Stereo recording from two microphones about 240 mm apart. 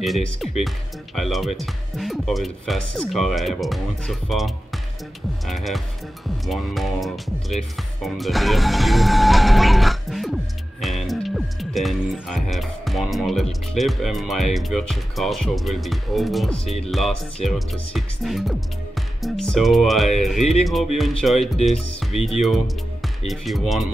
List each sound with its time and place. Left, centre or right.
0.0 s speech: centre
5.5 s speech: centre
16.5 s speech: left
17.5 s speech: centre